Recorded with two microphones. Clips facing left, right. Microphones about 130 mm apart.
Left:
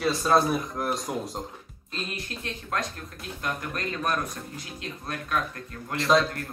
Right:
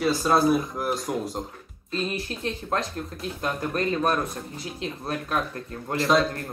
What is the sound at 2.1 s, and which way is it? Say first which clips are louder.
Speech: right 6 dB; 30° right (ahead or behind).